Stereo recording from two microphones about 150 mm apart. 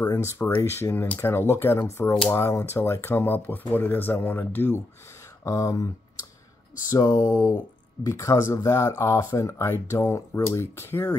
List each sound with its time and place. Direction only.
0.0 s speech: 15° left (ahead or behind)
6.9 s speech: 25° left (ahead or behind)